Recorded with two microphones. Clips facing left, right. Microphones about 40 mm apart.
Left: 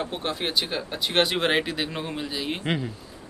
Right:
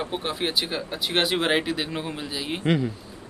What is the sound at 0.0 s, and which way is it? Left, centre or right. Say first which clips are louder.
Speech: right 1 dB; centre.